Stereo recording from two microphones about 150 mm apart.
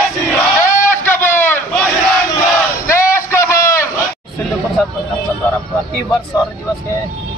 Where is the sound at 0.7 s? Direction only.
15° left (ahead or behind).